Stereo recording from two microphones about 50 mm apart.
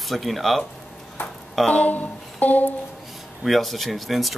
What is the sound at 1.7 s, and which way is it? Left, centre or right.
Speech, left.